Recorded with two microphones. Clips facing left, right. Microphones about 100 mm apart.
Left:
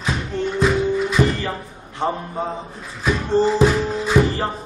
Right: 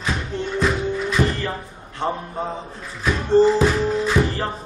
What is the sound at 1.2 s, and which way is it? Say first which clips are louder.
Music: left 2 dB; 15° left (ahead or behind).